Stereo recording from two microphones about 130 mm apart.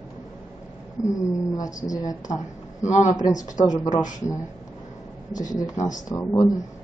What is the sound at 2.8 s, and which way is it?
Speech, 70° left (ahead or behind).